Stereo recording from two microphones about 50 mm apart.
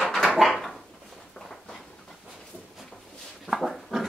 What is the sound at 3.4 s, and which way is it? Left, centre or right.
Dog, centre.